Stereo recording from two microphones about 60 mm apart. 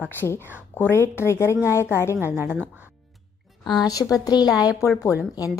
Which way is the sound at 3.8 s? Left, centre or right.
Left.